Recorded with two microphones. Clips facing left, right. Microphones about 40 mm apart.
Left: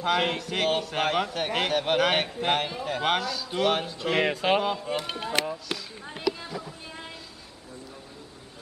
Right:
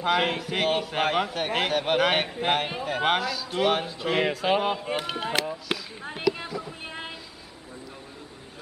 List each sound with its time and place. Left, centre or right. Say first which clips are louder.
0.0 s a man's voice: right 1 dB; centre
4.3 s a sound: even; centre
4.6 s speech: right 1 dB; centre
5.3 s speech: left 1 dB; centre